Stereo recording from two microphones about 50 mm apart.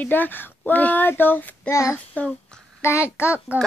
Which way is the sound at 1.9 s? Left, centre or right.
Left.